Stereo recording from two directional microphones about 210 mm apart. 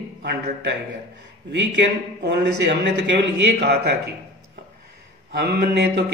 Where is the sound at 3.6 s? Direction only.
50° right (ahead or behind).